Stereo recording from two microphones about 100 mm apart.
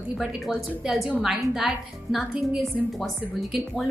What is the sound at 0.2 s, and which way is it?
A woman's voice, 5° right (ahead or behind).